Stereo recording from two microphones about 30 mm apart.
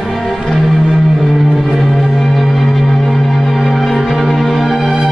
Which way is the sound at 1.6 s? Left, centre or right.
Centre.